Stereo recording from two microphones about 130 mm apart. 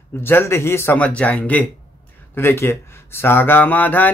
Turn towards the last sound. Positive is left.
turn(degrees=15)  # may be behind; listen again after turning